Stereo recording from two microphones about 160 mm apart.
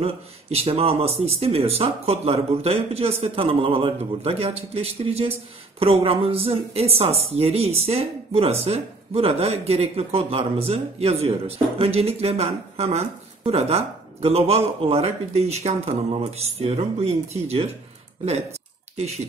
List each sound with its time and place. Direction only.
0.0 s a woman's voice: 40° right (ahead or behind)
18.9 s speech: 40° right (ahead or behind)